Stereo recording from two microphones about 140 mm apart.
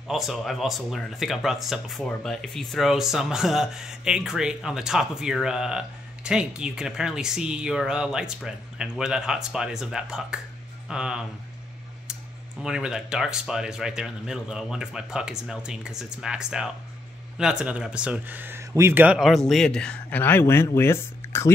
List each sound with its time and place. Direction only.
0.1 s speech: centre (ahead or behind)
12.6 s speech: 5° right (ahead or behind); by 21.5 s 20° left (ahead or behind)